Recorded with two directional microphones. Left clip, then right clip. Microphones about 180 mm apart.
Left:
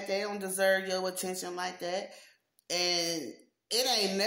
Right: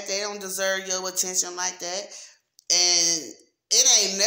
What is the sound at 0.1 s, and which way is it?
Speech, 30° left (ahead or behind).